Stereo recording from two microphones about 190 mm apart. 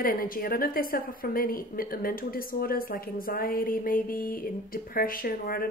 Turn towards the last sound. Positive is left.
turn(degrees=50)  # may be behind; listen again after turning